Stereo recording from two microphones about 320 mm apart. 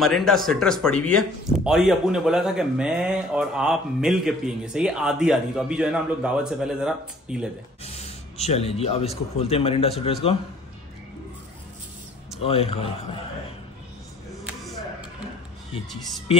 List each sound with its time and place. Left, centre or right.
0.0 s speech: centre
7.8 s speech: centre
12.4 s speech: centre
14.4 s a sound: centre